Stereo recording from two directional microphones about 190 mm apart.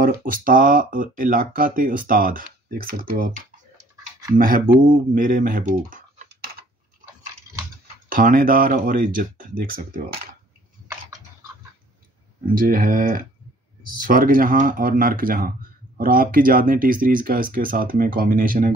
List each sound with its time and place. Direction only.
0.0 s speech: 50° right (ahead or behind)
8.1 s speech: 45° right (ahead or behind)
12.5 s speech: 45° right (ahead or behind)